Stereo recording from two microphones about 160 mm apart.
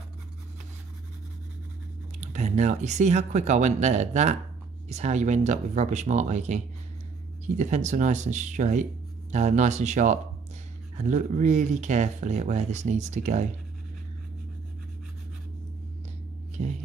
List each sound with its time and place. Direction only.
2.1 s speech: 45° right (ahead or behind)
16.6 s speech: 45° right (ahead or behind)